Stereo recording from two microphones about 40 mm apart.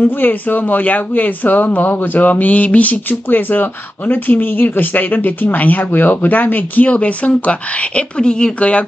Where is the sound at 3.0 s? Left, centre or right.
Left.